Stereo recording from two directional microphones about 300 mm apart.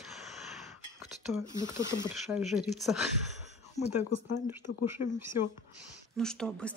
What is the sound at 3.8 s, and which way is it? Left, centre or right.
Speech, left.